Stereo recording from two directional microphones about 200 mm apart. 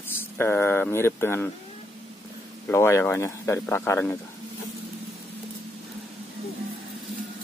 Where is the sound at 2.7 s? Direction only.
15° left (ahead or behind).